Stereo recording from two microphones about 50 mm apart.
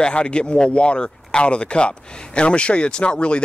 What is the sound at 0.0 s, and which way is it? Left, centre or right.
Speech, centre.